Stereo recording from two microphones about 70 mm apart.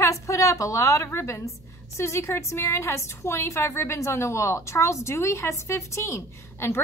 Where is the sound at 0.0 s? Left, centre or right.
Left.